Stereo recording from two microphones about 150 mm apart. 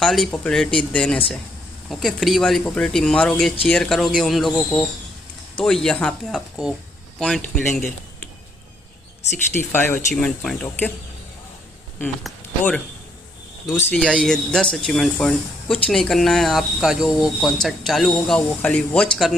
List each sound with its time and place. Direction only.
0.0 s speech: 5° left (ahead or behind)
7.6 s speech: 55° left (ahead or behind)
9.6 s speech: 15° left (ahead or behind)
12.0 s speech: 5° left (ahead or behind)
13.9 s speech: 5° left (ahead or behind)